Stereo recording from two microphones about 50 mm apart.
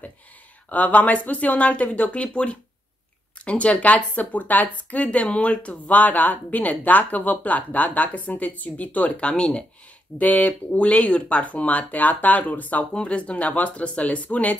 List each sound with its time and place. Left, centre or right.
0.7 s speech: left
10.1 s speech: left
12.9 s speech: left